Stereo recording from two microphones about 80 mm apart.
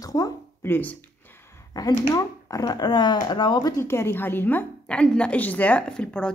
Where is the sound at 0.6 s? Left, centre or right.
Left.